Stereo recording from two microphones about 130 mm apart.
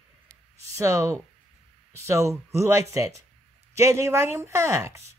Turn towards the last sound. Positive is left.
turn(degrees=-20)  # may be behind; listen again after turning